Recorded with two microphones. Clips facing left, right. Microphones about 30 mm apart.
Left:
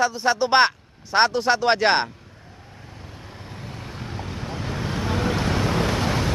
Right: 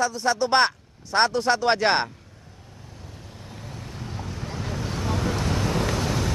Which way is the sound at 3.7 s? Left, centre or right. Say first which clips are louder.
Left 2 dB; left.